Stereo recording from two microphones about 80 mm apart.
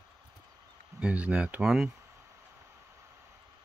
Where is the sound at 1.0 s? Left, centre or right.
Centre.